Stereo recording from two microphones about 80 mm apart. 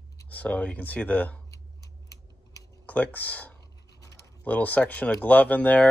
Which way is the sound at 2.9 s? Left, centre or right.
Left.